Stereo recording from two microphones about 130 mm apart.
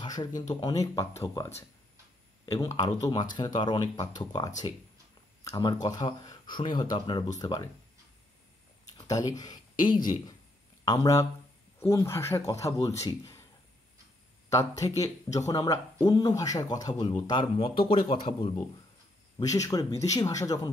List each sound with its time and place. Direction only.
0.0 s speech: 30° left (ahead or behind)
8.8 s speech: 30° left (ahead or behind)
14.5 s speech: 25° left (ahead or behind)
17.3 s a man's voice: 40° left (ahead or behind)
19.3 s speech: 25° left (ahead or behind)